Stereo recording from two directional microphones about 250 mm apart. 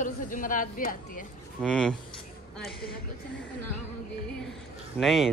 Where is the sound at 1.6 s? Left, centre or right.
Centre.